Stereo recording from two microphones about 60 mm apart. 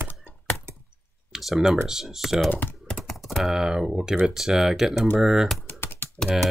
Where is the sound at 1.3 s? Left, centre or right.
Centre.